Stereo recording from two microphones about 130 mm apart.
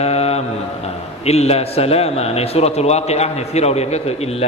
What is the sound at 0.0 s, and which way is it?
A man's voice, 55° left (ahead or behind).